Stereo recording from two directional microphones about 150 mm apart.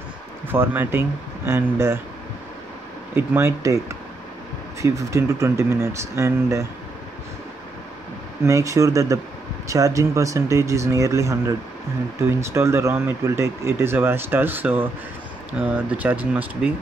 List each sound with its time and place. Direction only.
0.5 s speech: 15° right (ahead or behind)
3.2 s speech: 15° right (ahead or behind)
4.8 s speech: 20° right (ahead or behind)
8.5 s speech: 20° right (ahead or behind)